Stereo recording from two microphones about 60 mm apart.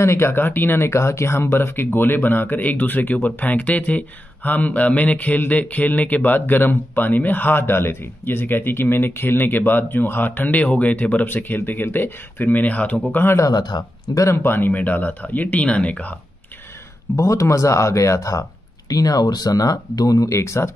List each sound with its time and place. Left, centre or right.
0.0 s speech: left
14.3 s speech: left
17.1 s speech: left